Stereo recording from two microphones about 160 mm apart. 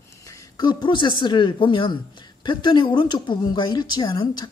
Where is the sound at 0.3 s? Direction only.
25° left (ahead or behind).